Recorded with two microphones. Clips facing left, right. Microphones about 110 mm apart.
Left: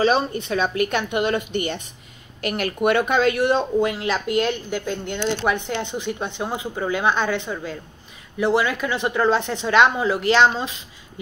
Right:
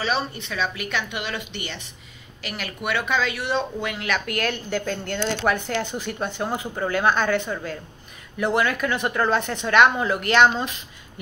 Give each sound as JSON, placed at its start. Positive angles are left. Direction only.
{"t": 0.0, "sound": "a woman's voice", "side_deg": 45}